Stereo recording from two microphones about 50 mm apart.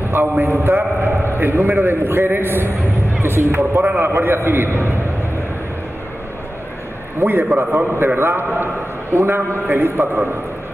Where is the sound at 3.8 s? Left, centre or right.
Right.